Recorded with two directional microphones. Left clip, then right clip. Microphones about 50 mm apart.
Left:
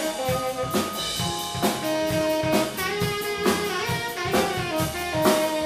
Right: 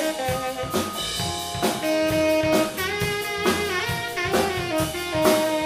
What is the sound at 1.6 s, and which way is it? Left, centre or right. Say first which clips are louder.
Music: right 3 dB; right.